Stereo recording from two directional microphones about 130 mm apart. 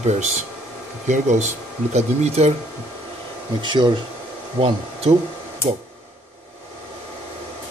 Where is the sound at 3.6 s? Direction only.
35° right (ahead or behind).